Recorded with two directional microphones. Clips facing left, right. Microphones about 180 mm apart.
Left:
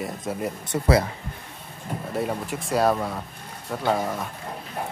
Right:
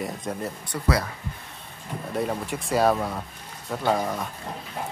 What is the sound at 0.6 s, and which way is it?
Speech, 25° left (ahead or behind).